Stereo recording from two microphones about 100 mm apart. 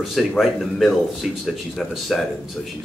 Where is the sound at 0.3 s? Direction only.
Centre (ahead or behind).